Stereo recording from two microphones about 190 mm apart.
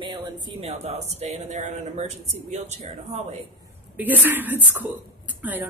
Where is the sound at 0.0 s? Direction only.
25° right (ahead or behind).